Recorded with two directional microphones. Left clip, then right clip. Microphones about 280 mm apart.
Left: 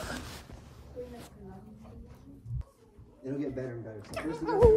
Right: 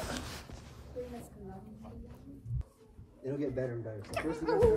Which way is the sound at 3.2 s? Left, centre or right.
Centre.